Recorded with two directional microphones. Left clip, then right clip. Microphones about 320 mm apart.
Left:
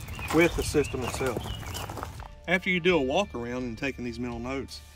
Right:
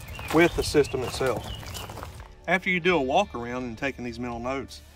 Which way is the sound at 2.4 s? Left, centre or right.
Centre.